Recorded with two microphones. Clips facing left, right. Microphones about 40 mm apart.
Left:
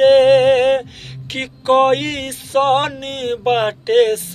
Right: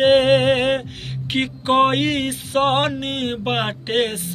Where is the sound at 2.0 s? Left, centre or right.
Centre.